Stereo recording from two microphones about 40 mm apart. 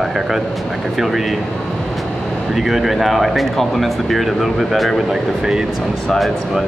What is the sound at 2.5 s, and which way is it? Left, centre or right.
Speech, centre.